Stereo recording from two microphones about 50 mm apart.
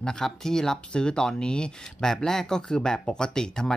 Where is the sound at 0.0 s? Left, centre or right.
Centre.